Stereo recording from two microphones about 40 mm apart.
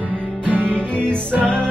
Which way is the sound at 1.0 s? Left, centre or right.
Left.